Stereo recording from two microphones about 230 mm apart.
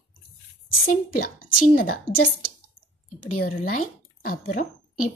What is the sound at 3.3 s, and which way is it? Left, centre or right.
Speech, left.